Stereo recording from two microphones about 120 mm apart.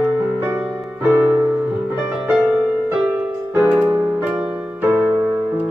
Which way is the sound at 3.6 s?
15° right (ahead or behind).